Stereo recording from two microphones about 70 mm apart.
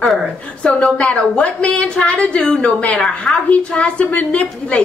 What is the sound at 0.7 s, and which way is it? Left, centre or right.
A woman's voice, centre.